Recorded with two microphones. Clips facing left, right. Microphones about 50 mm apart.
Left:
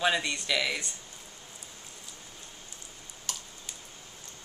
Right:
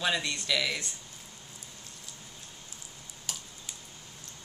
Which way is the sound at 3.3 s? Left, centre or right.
Centre.